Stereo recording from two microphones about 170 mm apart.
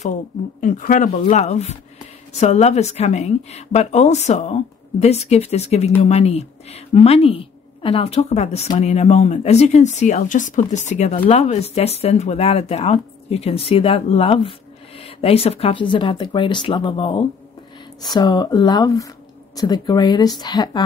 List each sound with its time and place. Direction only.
0.6 s a woman's voice: 50° left (ahead or behind); by 20.8 s 25° left (ahead or behind)